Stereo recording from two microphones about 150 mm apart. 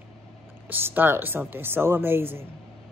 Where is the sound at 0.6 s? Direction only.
10° right (ahead or behind).